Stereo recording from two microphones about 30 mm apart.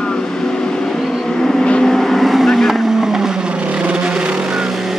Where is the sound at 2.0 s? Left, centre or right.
Centre.